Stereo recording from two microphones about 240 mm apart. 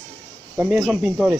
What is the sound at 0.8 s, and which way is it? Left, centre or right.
Speech, centre.